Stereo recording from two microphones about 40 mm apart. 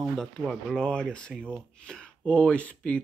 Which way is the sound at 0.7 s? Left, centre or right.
Centre.